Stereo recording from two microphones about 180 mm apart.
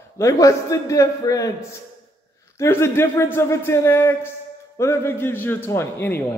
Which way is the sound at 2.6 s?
15° left (ahead or behind).